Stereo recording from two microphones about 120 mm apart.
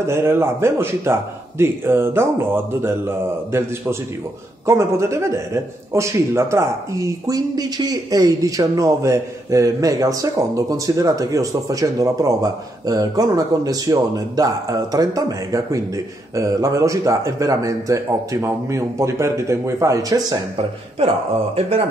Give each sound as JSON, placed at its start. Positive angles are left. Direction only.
{"t": 0.0, "sound": "a man's voice", "side_deg": -20}
{"t": 21.5, "sound": "speech", "side_deg": -55}